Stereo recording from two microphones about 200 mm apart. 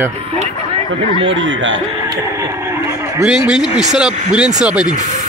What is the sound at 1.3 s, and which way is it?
Speech, 70° right (ahead or behind).